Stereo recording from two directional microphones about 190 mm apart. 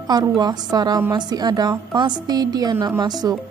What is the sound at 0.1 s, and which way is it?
A woman's voice, 20° right (ahead or behind).